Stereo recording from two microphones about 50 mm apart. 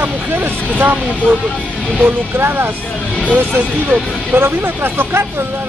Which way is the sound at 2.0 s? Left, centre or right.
Right.